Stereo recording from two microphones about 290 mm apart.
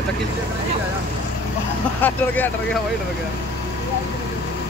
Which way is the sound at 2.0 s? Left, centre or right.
Centre.